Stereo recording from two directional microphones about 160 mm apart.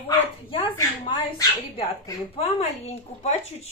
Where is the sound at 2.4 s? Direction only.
40° left (ahead or behind).